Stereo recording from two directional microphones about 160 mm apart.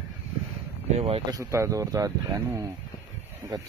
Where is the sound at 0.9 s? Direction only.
35° right (ahead or behind).